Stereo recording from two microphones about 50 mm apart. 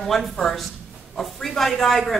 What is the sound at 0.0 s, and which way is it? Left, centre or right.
Speech, centre.